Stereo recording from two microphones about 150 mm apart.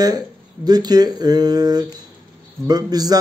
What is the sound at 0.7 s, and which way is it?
A man's voice, 25° right (ahead or behind).